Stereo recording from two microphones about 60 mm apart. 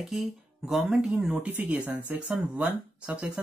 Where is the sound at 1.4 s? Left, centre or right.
Right.